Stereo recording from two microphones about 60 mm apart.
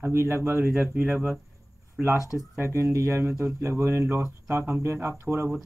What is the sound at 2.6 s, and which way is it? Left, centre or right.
Speech, right.